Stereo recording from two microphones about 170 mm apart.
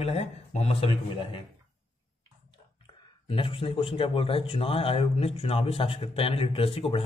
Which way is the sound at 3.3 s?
30° left (ahead or behind).